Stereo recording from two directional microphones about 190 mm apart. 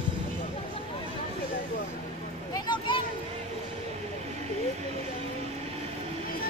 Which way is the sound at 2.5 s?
25° left (ahead or behind).